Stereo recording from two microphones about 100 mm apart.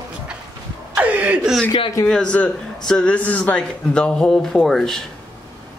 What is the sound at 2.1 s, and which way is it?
A man's voice, 10° left (ahead or behind).